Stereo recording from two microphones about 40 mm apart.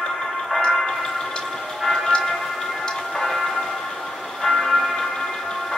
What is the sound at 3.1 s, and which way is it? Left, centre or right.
Music, centre.